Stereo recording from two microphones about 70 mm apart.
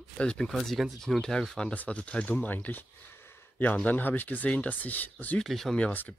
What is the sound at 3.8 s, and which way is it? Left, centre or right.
Speech, left.